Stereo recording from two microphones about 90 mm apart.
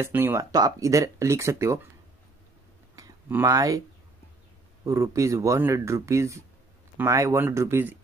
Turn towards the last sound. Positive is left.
turn(degrees=-25)  # may be behind; listen again after turning